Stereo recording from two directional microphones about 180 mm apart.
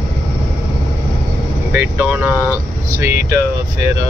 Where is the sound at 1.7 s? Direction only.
10° right (ahead or behind).